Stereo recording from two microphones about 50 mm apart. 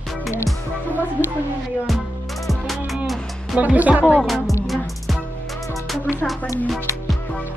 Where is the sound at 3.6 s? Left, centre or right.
Right.